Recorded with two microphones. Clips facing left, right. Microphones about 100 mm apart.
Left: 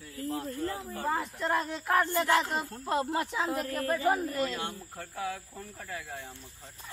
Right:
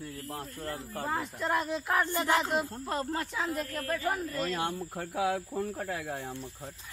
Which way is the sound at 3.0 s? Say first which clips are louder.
Left 2 dB; 15° left (ahead or behind).